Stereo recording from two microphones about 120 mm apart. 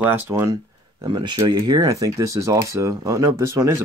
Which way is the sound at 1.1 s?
40° right (ahead or behind).